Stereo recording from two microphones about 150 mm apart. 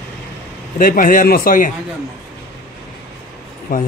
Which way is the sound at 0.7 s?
65° left (ahead or behind).